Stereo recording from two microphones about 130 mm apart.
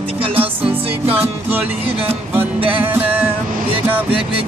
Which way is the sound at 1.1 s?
15° right (ahead or behind).